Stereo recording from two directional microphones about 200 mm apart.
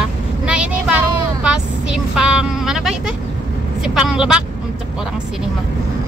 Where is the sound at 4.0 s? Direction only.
5° right (ahead or behind).